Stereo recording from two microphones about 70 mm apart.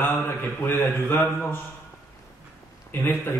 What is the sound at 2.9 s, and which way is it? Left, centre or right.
Speech, left.